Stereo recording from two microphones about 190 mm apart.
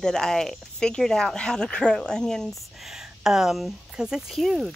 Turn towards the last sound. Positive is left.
turn(degrees=0)  # may be behind; listen again after turning